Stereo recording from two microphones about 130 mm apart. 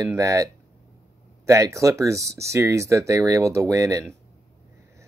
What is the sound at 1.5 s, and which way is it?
Speech, 25° right (ahead or behind).